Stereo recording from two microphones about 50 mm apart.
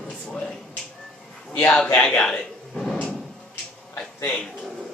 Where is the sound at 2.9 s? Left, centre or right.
Centre.